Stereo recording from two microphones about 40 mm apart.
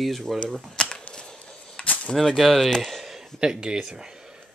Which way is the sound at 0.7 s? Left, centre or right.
Left.